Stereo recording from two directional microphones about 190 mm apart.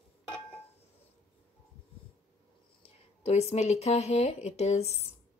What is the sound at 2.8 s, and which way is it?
Speech, 35° left (ahead or behind).